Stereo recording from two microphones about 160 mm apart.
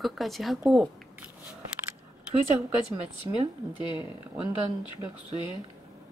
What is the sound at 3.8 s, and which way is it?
Speech, 30° left (ahead or behind).